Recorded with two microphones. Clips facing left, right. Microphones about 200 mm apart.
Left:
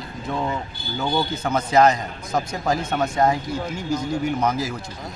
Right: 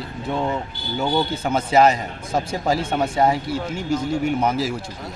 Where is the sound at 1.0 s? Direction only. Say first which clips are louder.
Right 2 dB; 10° right (ahead or behind).